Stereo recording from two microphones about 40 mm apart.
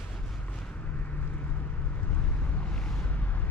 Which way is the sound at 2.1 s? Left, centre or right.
Left.